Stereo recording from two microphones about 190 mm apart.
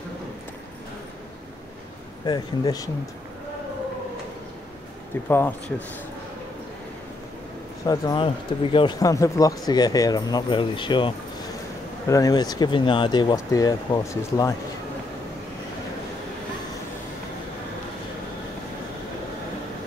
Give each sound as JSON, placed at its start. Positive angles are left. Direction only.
{"t": 2.2, "sound": "speech", "side_deg": 20}
{"t": 5.1, "sound": "speech", "side_deg": 10}
{"t": 7.8, "sound": "speech", "side_deg": 20}